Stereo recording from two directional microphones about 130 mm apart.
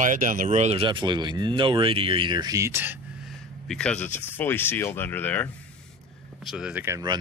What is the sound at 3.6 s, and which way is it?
Speech, 5° left (ahead or behind).